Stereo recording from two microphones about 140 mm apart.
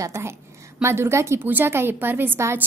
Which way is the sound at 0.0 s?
20° right (ahead or behind).